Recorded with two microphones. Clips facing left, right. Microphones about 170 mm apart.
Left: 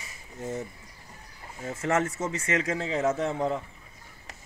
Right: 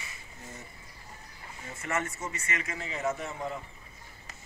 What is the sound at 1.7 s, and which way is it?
A man's voice, 90° left.